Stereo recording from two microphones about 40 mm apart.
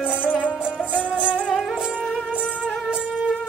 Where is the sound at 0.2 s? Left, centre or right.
Left.